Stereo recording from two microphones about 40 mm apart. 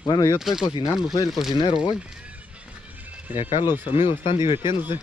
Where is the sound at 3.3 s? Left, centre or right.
Right.